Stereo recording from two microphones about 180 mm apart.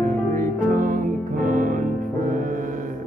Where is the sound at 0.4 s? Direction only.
50° right (ahead or behind).